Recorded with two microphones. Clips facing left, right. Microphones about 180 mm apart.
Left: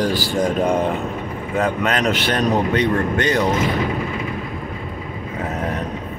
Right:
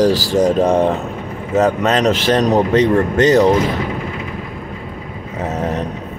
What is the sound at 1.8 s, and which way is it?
Speech, 35° right (ahead or behind).